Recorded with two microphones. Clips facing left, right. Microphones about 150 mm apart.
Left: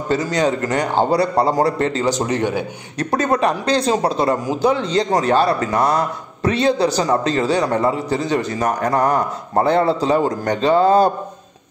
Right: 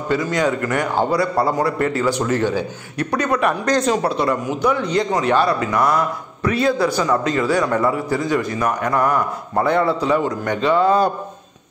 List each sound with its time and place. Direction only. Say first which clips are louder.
0.1 s a man's voice: left 1 dB; 30° left (ahead or behind)
3.0 s a man's voice: left 2 dB; 35° left (ahead or behind)